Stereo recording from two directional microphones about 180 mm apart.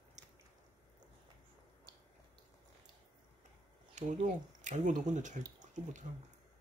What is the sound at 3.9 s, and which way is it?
Speech, 40° right (ahead or behind).